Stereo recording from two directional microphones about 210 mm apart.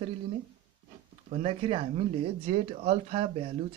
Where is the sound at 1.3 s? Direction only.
25° right (ahead or behind).